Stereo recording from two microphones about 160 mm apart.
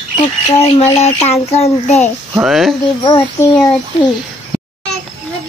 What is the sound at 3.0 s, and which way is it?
Speech, 30° left (ahead or behind).